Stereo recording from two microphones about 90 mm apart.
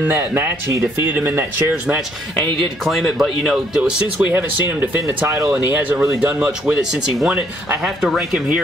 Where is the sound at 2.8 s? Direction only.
Centre (ahead or behind).